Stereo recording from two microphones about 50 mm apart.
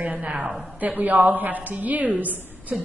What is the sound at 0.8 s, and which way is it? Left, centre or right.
A woman's voice, right.